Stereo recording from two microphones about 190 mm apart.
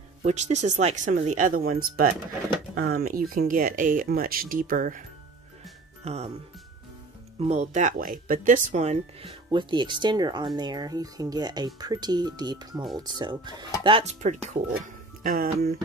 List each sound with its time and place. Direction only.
0.2 s speech: 40° right (ahead or behind)
6.0 s speech: 35° right (ahead or behind)
7.3 s speech: 35° right (ahead or behind)
15.2 s speech: 50° right (ahead or behind)